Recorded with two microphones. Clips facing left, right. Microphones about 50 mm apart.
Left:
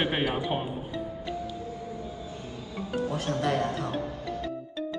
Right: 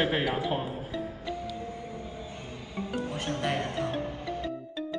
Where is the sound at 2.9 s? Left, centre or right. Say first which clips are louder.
Left 4 dB; right.